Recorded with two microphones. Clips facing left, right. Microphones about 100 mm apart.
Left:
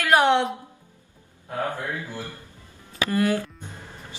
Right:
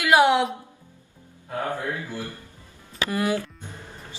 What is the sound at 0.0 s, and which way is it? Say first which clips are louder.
Speech: right 1 dB; 10° right (ahead or behind).